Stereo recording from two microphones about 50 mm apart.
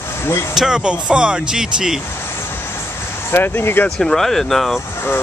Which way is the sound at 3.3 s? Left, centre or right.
Left.